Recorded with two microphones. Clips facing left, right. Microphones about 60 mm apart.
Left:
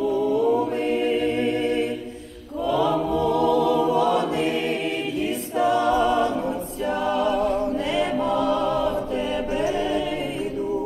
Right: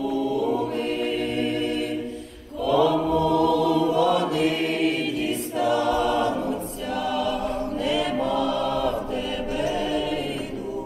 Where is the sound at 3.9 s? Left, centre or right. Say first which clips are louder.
Even; left.